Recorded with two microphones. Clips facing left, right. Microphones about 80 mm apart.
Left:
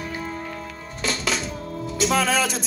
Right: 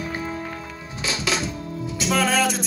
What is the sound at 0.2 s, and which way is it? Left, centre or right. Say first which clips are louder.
Music: right 1 dB; centre.